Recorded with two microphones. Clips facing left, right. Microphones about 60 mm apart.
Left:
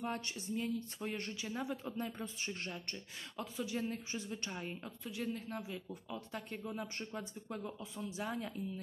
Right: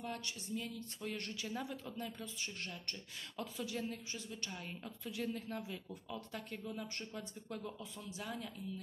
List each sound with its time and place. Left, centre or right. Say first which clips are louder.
0.0 s speech: left 4 dB; left; by 1.8 s centre
1.9 s speech: left 4 dB; left
3.3 s speech: left 2 dB; centre
3.9 s speech: left 4 dB; left
4.6 s speech: left 2 dB; centre
8.2 s speech: left 4 dB; left